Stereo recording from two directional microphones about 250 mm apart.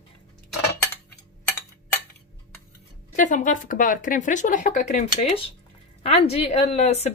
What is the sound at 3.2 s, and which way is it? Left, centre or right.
Speech, left.